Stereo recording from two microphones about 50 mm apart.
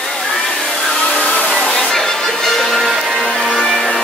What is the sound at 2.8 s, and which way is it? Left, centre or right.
Music, centre.